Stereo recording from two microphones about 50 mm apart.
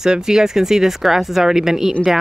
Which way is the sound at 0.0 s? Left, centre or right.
Centre.